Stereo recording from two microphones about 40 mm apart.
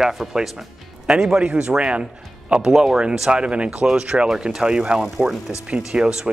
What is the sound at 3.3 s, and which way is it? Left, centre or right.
Speech, right.